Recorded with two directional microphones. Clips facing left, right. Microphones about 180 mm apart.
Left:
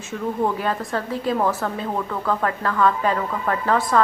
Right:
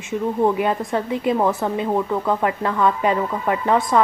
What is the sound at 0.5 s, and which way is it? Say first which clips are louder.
A woman's voice: right 4 dB; 20° right (ahead or behind).